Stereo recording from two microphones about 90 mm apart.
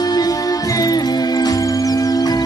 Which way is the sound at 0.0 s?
45° left (ahead or behind).